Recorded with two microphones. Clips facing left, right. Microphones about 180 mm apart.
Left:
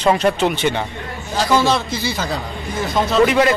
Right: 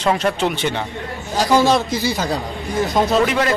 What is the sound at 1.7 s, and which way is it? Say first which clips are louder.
Speech: right 2 dB; 40° right (ahead or behind).